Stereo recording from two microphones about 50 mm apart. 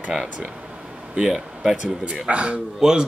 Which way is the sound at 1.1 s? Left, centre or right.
Centre.